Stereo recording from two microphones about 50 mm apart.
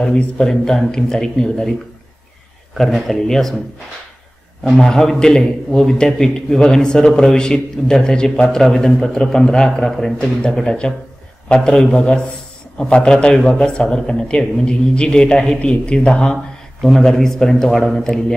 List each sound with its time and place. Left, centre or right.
0.0 s a man's voice: centre
2.8 s a man's voice: centre
4.7 s a man's voice: centre